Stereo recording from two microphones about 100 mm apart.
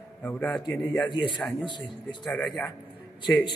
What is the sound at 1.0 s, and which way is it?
Speech, 50° left (ahead or behind).